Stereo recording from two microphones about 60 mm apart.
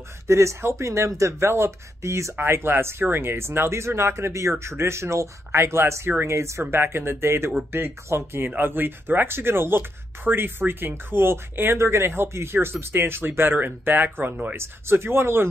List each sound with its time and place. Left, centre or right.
0.3 s speech: right
2.3 s speech: right
6.7 s speech: right